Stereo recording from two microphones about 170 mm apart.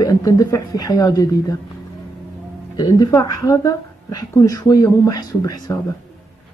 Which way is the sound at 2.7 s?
20° left (ahead or behind).